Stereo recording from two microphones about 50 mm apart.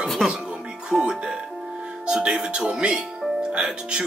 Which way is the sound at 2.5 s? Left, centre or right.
Centre.